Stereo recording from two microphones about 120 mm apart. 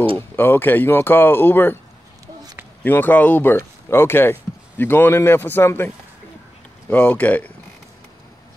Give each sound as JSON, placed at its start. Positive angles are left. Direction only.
{"t": 0.4, "sound": "speech", "side_deg": 15}
{"t": 2.8, "sound": "speech", "side_deg": 15}
{"t": 6.9, "sound": "speech", "side_deg": 15}